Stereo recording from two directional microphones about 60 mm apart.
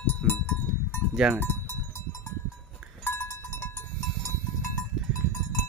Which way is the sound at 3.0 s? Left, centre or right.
Left.